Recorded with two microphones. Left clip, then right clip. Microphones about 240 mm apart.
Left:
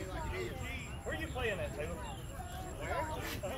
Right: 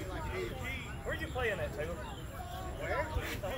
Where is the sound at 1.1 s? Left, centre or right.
Right.